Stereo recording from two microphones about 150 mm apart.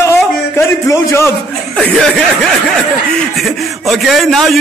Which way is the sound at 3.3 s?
Centre (ahead or behind).